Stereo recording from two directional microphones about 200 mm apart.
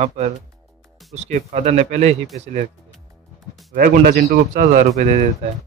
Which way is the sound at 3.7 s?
50° right (ahead or behind).